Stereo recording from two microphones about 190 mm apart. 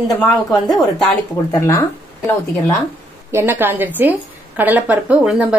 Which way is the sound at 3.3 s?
10° right (ahead or behind).